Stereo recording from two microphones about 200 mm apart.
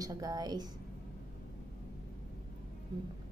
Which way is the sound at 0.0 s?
20° right (ahead or behind).